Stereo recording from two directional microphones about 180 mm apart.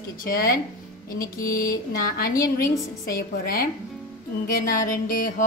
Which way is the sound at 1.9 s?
55° left (ahead or behind).